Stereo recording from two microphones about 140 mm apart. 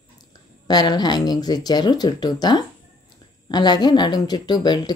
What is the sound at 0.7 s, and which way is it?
Speech, 30° left (ahead or behind).